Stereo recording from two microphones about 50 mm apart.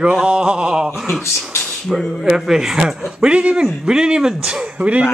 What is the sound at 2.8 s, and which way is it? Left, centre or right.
A man's voice, right.